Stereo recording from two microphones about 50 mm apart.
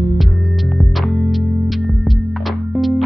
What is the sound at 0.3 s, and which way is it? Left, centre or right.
Music, left.